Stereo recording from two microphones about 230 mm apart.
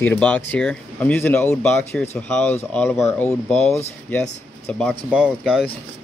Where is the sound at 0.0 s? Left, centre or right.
Centre.